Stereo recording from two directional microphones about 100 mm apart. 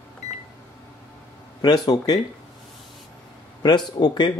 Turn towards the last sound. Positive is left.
turn(degrees=45)  # may be behind; listen again after turning